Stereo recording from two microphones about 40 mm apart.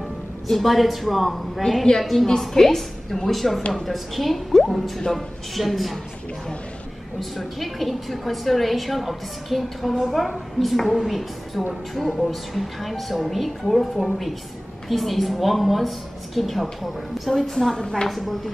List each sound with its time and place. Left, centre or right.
0.5 s a woman's voice: centre
1.6 s a woman's voice: left
2.0 s a woman's voice: centre
7.2 s a woman's voice: centre
17.4 s a woman's voice: centre
17.7 s a woman's voice: left
18.0 s a woman's voice: centre